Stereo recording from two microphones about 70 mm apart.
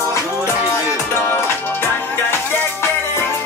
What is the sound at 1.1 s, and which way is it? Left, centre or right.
Music, left.